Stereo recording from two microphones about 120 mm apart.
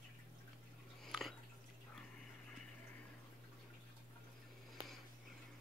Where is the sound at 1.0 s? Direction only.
Centre (ahead or behind).